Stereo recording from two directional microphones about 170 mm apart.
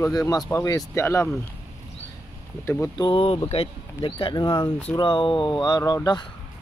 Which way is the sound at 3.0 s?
35° left (ahead or behind).